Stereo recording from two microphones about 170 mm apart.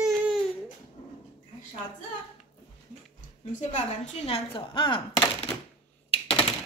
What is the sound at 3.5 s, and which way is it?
Speech, 45° left (ahead or behind).